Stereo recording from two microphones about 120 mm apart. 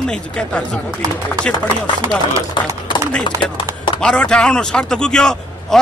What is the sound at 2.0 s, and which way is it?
Speech, 25° right (ahead or behind).